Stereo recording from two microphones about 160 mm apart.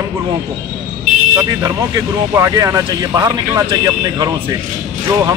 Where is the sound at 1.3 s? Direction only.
20° right (ahead or behind).